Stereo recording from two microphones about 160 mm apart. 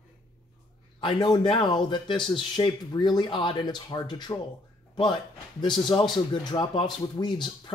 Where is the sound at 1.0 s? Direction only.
30° left (ahead or behind).